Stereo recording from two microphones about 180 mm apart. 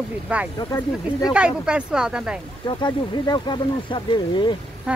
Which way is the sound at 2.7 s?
25° left (ahead or behind).